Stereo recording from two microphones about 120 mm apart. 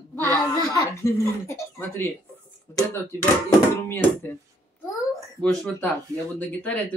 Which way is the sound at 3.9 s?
15° left (ahead or behind).